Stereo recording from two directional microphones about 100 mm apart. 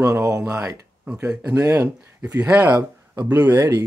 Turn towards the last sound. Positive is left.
turn(degrees=-20)  # may be behind; listen again after turning